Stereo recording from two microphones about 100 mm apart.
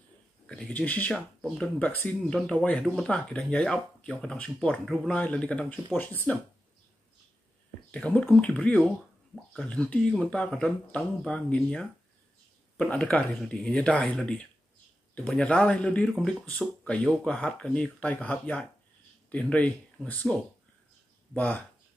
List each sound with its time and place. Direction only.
0.5 s speech: 10° left (ahead or behind)
7.9 s speech: 10° left (ahead or behind)